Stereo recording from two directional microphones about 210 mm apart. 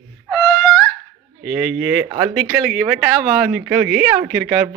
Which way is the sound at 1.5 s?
5° right (ahead or behind).